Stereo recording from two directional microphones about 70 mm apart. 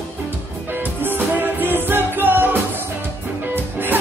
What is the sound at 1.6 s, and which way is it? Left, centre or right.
Music, right.